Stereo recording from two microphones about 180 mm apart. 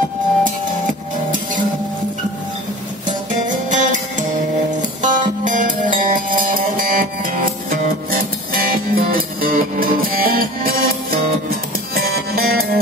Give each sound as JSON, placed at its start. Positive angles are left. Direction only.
{"t": 0.4, "sound": "music", "side_deg": -45}
{"t": 3.4, "sound": "music", "side_deg": -45}